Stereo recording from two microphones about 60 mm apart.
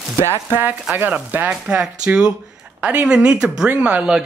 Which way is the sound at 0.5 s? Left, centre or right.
Right.